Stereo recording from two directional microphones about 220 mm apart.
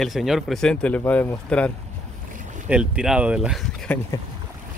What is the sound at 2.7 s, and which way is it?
Speech, 5° right (ahead or behind).